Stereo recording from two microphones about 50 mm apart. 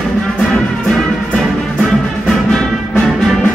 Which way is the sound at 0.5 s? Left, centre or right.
Centre.